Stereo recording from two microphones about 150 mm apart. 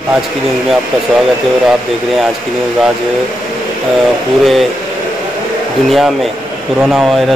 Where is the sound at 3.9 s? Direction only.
Centre (ahead or behind).